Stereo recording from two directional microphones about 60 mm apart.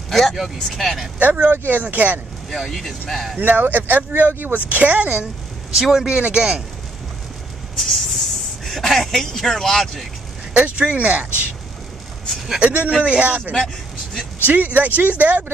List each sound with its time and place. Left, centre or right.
0.1 s speech: centre
1.2 s speech: right
2.5 s speech: centre
3.3 s speech: right
5.8 s speech: centre
6.0 s a man's voice: centre
7.8 s speech: centre
10.5 s speech: centre
12.5 s a man's voice: right
14.4 s speech: right